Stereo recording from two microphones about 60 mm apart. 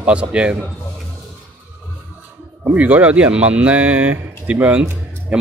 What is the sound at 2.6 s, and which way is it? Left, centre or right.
Speech, right.